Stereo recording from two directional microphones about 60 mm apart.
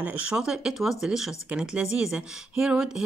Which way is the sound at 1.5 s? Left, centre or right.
Centre.